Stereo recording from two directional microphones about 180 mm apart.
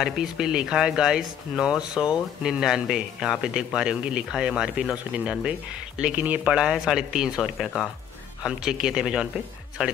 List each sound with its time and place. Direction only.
0.0 s speech: 5° right (ahead or behind)